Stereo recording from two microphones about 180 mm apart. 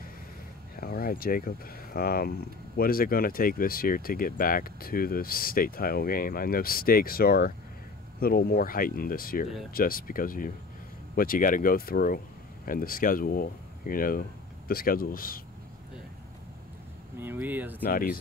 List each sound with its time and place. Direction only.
0.7 s speech: 55° left (ahead or behind)
17.2 s speech: 10° right (ahead or behind)
17.8 s speech: 55° left (ahead or behind)